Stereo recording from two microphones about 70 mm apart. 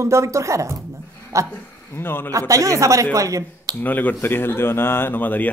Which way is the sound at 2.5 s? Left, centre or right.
Right.